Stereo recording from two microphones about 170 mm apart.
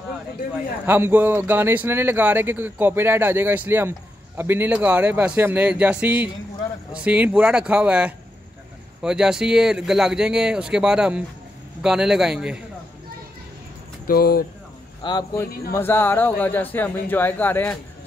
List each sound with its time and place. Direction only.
0.8 s speech: 10° right (ahead or behind)
14.0 s speech: 60° left (ahead or behind)
15.0 s speech: 25° left (ahead or behind)
15.7 s speech: 15° left (ahead or behind)